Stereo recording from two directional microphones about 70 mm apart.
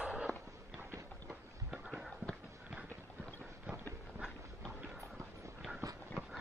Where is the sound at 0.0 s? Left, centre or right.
Centre.